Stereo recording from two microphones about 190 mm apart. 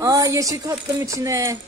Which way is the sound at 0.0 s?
15° right (ahead or behind).